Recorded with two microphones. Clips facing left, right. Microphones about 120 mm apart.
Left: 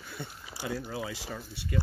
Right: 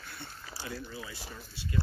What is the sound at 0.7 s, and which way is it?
Speech, 90° left.